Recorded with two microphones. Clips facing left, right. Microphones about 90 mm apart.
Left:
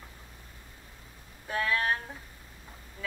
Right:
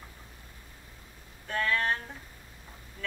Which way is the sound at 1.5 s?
10° left (ahead or behind).